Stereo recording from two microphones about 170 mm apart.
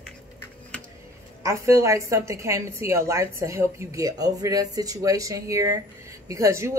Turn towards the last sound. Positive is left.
turn(degrees=-15)  # may be behind; listen again after turning